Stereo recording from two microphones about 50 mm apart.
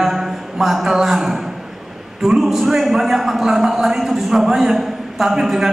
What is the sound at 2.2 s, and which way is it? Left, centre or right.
A man's voice, centre.